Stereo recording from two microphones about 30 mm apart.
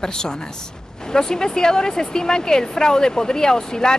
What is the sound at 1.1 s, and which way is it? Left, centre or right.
Speech, left.